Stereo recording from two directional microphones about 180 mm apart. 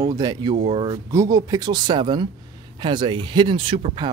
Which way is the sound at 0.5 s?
35° right (ahead or behind).